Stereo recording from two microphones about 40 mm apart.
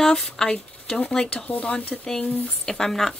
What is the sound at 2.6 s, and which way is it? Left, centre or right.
Speech, centre.